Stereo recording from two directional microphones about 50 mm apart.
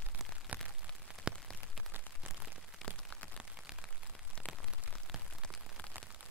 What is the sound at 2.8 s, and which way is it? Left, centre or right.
Rain on surface, left.